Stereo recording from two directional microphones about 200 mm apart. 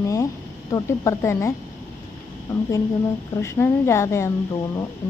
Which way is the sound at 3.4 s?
15° left (ahead or behind).